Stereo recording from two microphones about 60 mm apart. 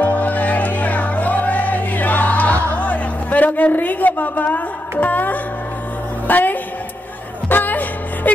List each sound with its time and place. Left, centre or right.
0.0 s music: left
6.2 s a woman's voice: left
7.4 s music: left